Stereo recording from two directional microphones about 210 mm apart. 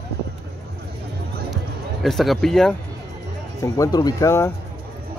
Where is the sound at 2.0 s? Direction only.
Centre (ahead or behind).